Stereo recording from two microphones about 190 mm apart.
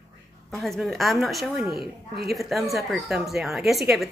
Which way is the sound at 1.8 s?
55° right (ahead or behind).